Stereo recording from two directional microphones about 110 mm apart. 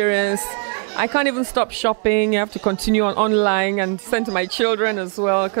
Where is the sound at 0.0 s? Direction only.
15° right (ahead or behind).